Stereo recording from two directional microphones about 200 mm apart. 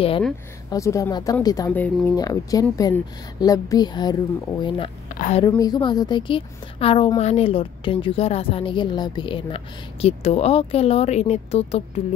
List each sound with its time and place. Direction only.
0.7 s speech: 15° left (ahead or behind)
2.1 s a woman's voice: 20° left (ahead or behind)
5.1 s a woman's voice: 40° left (ahead or behind)
5.6 s a woman's voice: 20° left (ahead or behind)